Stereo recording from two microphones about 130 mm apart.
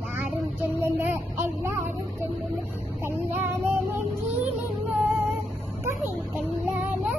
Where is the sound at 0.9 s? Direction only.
15° right (ahead or behind).